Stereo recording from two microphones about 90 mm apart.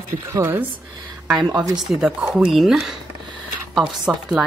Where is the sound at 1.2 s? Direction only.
5° right (ahead or behind).